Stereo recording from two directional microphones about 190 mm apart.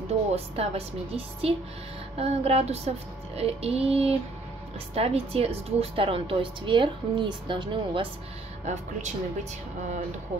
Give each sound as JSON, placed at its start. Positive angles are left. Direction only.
{"t": 0.3, "sound": "a woman's voice", "side_deg": -30}
{"t": 8.6, "sound": "speech", "side_deg": -40}